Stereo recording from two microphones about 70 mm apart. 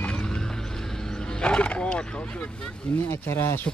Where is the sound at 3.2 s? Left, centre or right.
Left.